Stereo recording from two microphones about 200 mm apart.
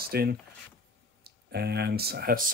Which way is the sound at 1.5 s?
55° right (ahead or behind).